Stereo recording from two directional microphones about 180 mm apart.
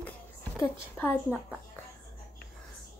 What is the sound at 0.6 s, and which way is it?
Speech, 10° left (ahead or behind).